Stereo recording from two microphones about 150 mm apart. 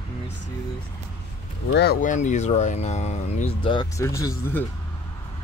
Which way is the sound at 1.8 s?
75° left (ahead or behind).